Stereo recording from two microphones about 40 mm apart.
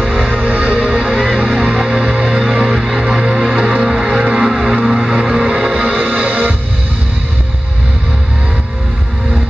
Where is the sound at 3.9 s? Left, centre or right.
Centre.